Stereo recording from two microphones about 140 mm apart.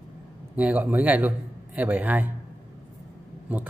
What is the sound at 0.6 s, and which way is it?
Speech, 10° right (ahead or behind).